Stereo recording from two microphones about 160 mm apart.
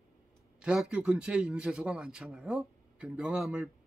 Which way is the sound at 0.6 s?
5° right (ahead or behind).